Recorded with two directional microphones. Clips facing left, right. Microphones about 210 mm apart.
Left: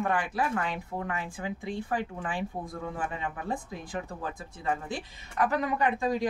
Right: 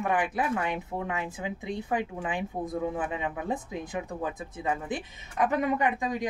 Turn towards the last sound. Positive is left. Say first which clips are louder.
# left 1 dB
turn(degrees=-15)  # may be behind; listen again after turning